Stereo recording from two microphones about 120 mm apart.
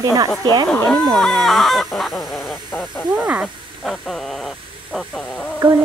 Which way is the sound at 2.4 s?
20° left (ahead or behind).